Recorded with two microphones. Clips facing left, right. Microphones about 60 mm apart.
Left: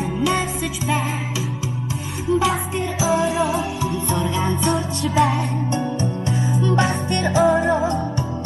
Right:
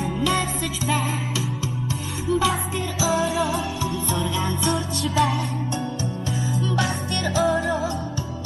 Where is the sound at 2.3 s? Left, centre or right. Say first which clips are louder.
Left 3 dB; centre.